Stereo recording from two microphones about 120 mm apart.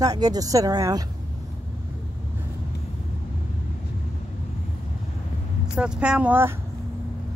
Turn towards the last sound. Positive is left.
turn(degrees=-20)  # may be behind; listen again after turning